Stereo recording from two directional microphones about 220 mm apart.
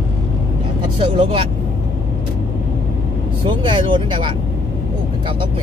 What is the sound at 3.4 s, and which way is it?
Speech, 20° right (ahead or behind).